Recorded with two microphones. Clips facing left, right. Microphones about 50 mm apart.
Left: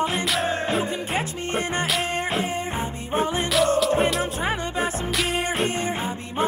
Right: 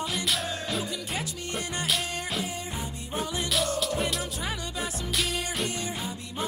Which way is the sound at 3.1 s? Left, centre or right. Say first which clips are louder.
Left 7 dB; left.